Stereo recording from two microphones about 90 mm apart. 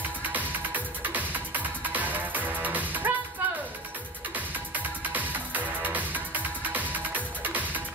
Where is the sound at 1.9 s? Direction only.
20° right (ahead or behind).